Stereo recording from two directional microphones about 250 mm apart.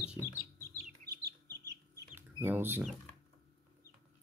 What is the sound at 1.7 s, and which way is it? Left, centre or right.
Chicken, centre.